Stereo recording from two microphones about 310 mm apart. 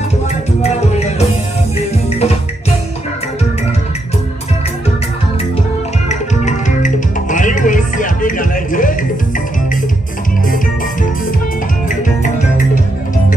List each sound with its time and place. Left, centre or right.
0.6 s music: left
6.0 s music: left
11.9 s music: left